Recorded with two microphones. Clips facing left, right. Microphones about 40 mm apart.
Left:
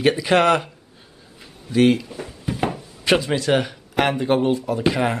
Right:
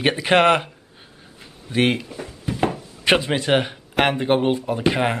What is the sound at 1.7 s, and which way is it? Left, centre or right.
Speech, right.